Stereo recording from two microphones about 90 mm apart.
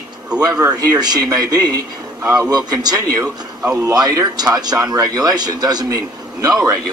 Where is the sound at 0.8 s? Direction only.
50° right (ahead or behind).